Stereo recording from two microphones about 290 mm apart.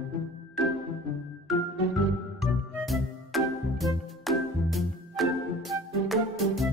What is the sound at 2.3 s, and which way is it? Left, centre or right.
Music, centre.